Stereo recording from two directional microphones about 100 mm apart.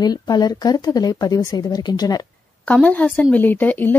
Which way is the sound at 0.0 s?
40° left (ahead or behind).